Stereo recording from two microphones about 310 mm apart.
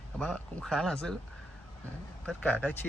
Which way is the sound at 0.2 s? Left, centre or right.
Centre.